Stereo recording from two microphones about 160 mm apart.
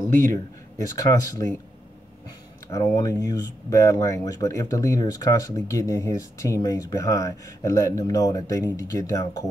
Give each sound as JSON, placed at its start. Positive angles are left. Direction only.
{"t": 0.3, "sound": "speech", "side_deg": 20}
{"t": 2.7, "sound": "speech", "side_deg": 20}